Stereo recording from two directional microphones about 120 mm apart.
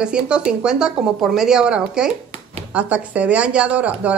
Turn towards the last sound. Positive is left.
turn(degrees=-10)  # may be behind; listen again after turning